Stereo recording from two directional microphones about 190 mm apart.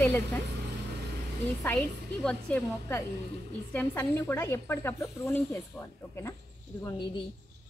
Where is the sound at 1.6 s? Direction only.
5° left (ahead or behind).